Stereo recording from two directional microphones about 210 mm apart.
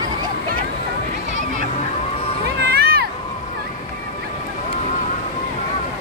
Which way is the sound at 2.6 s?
50° right (ahead or behind).